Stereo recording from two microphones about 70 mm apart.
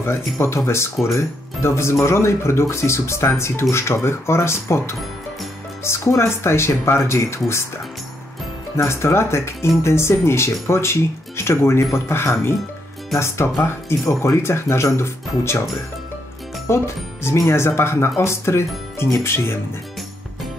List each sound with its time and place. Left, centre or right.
0.0 s speech: left
13.6 s speech: left
16.6 s speech: left